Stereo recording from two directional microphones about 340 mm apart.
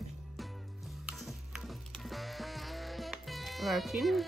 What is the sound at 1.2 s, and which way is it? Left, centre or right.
Music, centre.